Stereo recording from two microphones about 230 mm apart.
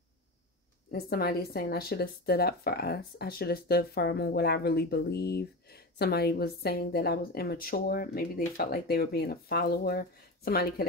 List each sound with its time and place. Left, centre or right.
0.9 s speech: left